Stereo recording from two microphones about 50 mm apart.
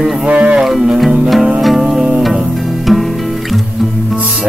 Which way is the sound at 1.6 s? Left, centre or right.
Centre.